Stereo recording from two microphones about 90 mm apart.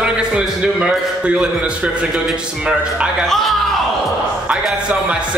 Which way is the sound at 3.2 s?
5° left (ahead or behind).